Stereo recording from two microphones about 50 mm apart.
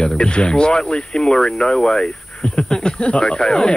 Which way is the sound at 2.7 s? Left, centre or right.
Centre.